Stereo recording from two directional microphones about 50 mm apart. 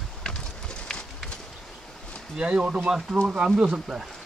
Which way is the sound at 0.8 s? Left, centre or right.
Centre.